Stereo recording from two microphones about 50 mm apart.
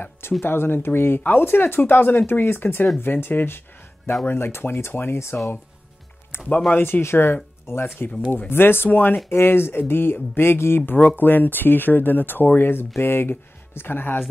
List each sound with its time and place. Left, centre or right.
0.4 s speech: left
6.3 s music: left
6.8 s speech: left
10.9 s speech: left